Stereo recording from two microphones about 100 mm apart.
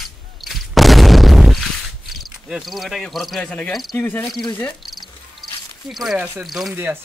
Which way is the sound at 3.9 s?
20° left (ahead or behind).